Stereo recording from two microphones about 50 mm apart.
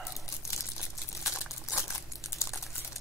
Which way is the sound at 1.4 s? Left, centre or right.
Left.